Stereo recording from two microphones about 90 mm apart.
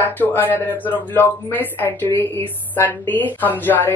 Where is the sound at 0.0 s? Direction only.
20° left (ahead or behind).